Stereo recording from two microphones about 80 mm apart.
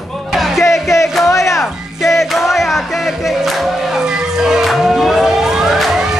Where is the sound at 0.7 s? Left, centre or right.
Left.